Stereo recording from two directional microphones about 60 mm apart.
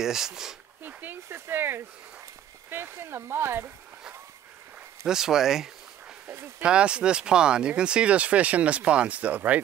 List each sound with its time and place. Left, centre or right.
0.0 s speech: centre
0.8 s speech: right
5.0 s speech: centre
6.2 s speech: right
6.6 s speech: centre